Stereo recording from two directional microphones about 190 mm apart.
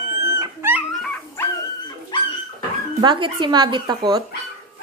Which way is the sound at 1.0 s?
5° left (ahead or behind).